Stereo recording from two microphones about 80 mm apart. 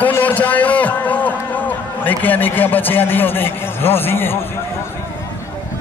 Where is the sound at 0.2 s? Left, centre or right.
Centre.